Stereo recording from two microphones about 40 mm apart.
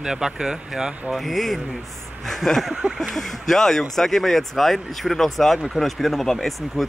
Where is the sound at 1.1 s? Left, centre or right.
Centre.